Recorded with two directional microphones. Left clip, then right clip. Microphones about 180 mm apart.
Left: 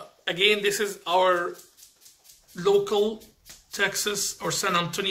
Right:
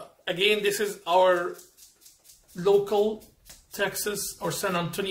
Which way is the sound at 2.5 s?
20° right (ahead or behind).